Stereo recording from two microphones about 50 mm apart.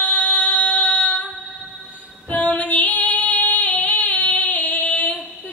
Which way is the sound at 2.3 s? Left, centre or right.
Left.